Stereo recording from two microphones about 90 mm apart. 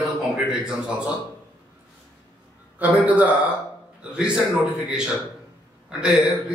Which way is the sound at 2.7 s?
15° right (ahead or behind).